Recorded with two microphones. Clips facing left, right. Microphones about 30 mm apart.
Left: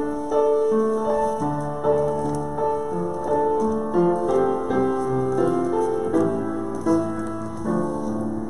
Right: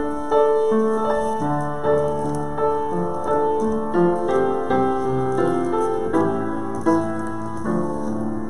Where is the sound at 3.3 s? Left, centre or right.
Centre.